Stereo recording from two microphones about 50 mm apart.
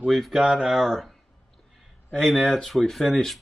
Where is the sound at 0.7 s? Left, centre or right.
Centre.